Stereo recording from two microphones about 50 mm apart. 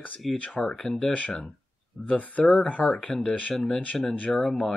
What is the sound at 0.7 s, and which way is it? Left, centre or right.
Speech, centre.